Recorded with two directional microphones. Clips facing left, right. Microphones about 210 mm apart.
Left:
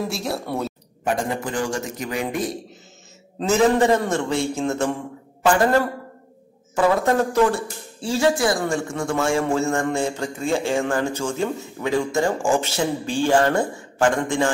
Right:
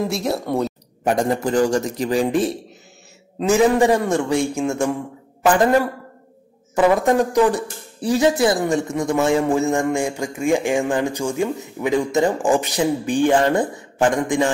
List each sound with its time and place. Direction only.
0.1 s speech: centre (ahead or behind)
1.3 s speech: 40° right (ahead or behind)
3.3 s a man's voice: 15° right (ahead or behind)